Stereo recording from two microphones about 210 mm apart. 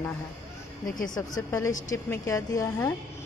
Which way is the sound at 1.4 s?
15° left (ahead or behind).